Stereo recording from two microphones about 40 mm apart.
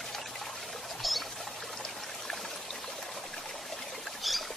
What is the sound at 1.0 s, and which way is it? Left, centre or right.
Rodents, centre.